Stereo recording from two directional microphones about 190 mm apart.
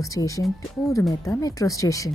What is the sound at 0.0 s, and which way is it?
Speech, 15° left (ahead or behind).